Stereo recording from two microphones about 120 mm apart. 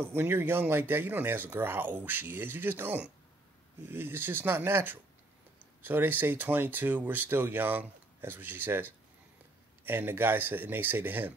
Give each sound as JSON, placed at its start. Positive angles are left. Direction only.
{"t": 0.0, "sound": "speech", "side_deg": -20}